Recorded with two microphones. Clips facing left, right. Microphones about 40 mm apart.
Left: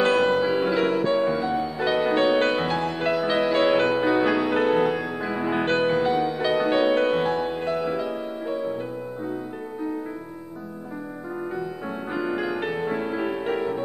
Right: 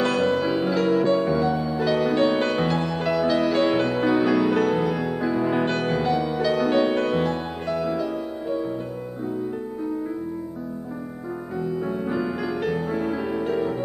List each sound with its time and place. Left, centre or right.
0.0 s music: left
3.3 s music: left
4.9 s music: centre
11.6 s music: centre